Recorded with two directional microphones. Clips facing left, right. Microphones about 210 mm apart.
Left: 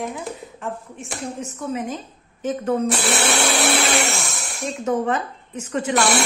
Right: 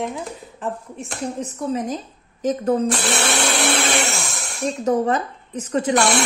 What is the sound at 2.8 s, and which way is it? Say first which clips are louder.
Blender: even; 5° left (ahead or behind).